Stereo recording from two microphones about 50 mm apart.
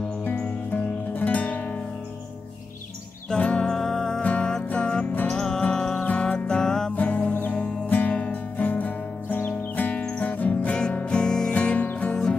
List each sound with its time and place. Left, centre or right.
0.2 s music: left
3.3 s music: centre
4.2 s music: left
7.0 s music: left
10.7 s music: left
12.1 s music: centre